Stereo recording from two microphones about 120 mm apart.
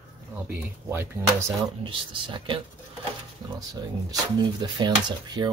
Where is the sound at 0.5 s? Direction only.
15° right (ahead or behind).